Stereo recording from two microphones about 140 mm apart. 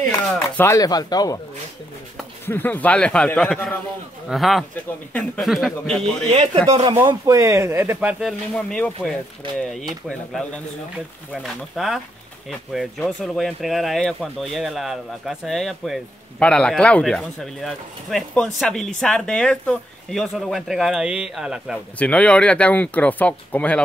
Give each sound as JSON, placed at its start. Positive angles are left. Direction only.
{"t": 0.4, "sound": "speech", "side_deg": 20}
{"t": 2.4, "sound": "speech", "side_deg": 15}
{"t": 6.3, "sound": "speech", "side_deg": -50}
{"t": 7.2, "sound": "speech", "side_deg": -20}
{"t": 8.2, "sound": "speech", "side_deg": 0}
{"t": 11.7, "sound": "speech", "side_deg": 0}
{"t": 21.9, "sound": "speech", "side_deg": 10}